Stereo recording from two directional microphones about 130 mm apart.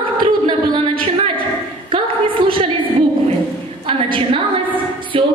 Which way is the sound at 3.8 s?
40° right (ahead or behind).